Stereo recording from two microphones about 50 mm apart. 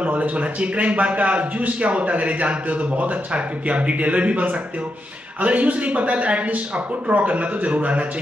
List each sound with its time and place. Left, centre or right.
0.0 s a man's voice: right